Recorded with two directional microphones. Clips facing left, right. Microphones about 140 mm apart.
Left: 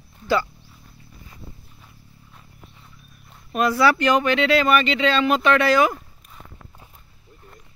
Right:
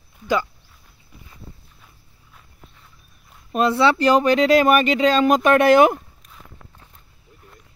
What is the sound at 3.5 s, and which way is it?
Speech, 30° right (ahead or behind).